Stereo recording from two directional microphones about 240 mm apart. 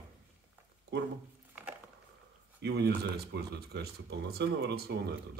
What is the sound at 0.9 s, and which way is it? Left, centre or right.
Speech, right.